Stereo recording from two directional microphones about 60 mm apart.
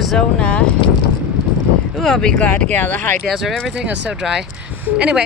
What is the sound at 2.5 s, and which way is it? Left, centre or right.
Speech, left.